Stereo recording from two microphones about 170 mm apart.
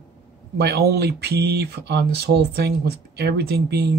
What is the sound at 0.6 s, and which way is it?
Speech, 70° right (ahead or behind).